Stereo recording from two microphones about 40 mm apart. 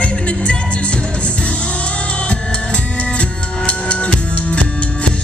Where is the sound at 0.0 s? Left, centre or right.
Left.